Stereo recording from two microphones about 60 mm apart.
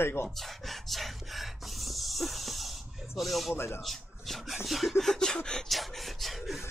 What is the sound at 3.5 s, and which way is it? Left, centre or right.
Speech, left.